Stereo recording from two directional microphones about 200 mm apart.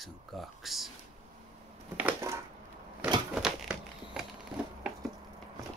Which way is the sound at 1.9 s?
10° right (ahead or behind).